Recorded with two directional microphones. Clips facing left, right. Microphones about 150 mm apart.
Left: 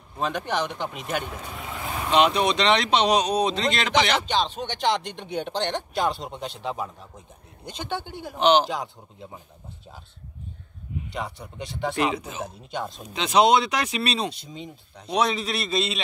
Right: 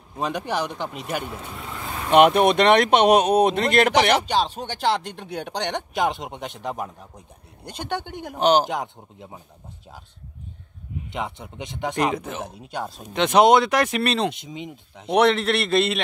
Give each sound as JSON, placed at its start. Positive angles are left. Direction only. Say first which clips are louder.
{"t": 0.2, "sound": "speech", "louder": "right 1 dB", "side_deg": -10}
{"t": 2.0, "sound": "speech", "louder": "right 5 dB", "side_deg": -55}
{"t": 4.2, "sound": "speech", "louder": "right 2 dB", "side_deg": -10}
{"t": 8.4, "sound": "speech", "louder": "right 1 dB", "side_deg": -40}
{"t": 11.1, "sound": "speech", "louder": "right 4 dB", "side_deg": -20}
{"t": 11.9, "sound": "speech", "louder": "right 3 dB", "side_deg": -45}